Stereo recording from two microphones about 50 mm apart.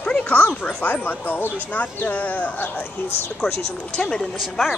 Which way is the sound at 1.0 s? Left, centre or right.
Left.